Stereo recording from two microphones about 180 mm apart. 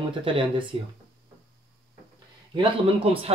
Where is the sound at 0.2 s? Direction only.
30° right (ahead or behind).